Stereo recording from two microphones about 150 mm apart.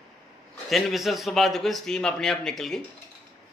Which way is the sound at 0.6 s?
Centre (ahead or behind).